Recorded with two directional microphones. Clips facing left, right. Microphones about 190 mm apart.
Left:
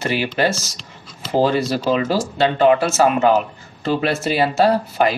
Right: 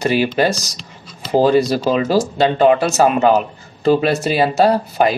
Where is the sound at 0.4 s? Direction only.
15° right (ahead or behind).